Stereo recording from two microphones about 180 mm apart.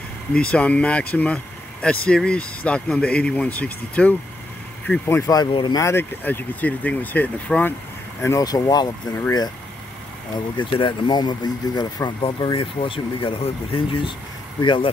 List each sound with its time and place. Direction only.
0.3 s speech: 5° left (ahead or behind); by 8.8 s 20° left (ahead or behind)
10.6 s speech: 25° left (ahead or behind)